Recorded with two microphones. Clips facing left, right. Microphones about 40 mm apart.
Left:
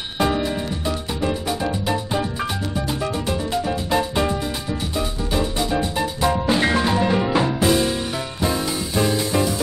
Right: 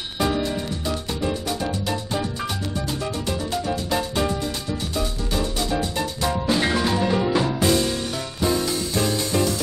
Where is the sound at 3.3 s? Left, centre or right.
Centre.